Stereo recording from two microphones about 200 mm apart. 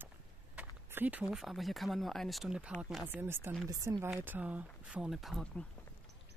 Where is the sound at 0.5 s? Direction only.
10° right (ahead or behind).